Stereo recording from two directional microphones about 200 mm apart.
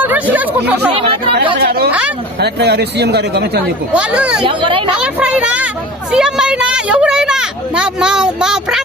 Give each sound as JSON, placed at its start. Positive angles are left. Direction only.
{"t": 0.0, "sound": "chatter", "side_deg": -10}
{"t": 1.6, "sound": "speech", "side_deg": -50}
{"t": 3.9, "sound": "speech", "side_deg": -5}
{"t": 4.5, "sound": "speech", "side_deg": -25}
{"t": 4.9, "sound": "speech", "side_deg": -5}